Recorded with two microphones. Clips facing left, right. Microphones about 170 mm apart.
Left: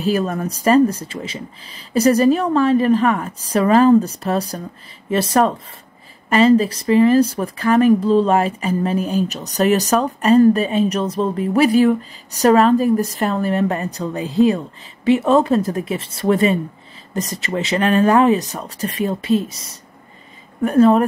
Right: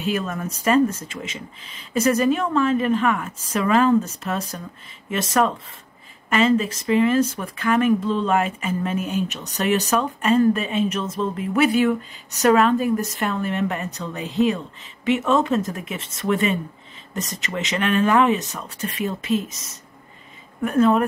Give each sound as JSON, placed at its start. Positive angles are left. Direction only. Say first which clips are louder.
{"t": 0.0, "sound": "speech", "louder": "left 6 dB", "side_deg": 35}